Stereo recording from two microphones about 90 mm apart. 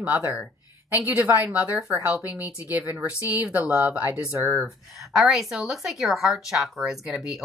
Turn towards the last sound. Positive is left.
turn(degrees=-5)  # may be behind; listen again after turning